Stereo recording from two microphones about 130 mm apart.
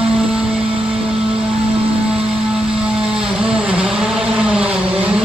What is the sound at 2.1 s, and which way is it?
Vehicle, 5° right (ahead or behind).